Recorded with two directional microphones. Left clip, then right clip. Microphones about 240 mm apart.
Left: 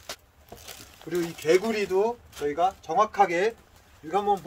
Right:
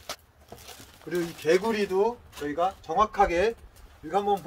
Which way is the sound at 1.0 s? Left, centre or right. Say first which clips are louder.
Left 1 dB; centre.